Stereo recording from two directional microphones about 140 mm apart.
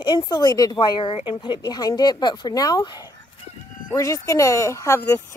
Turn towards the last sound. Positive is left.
turn(degrees=20)  # may be behind; listen again after turning